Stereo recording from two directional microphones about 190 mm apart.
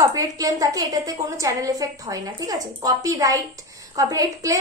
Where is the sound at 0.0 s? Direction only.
20° right (ahead or behind).